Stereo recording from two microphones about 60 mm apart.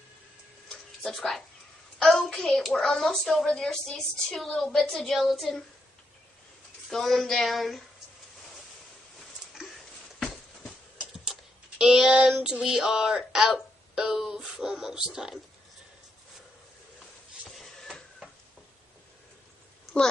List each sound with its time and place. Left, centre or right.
1.0 s a child's voice: centre
4.7 s a child's voice: centre
6.9 s a child's voice: centre
10.1 s a sound: centre
11.8 s child singing: centre
12.4 s speech: centre
17.5 s a sound: centre